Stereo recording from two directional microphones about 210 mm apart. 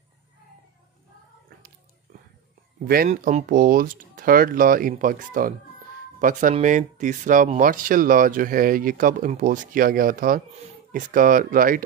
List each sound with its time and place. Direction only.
3.1 s speech: 35° right (ahead or behind)
6.5 s speech: 35° right (ahead or behind)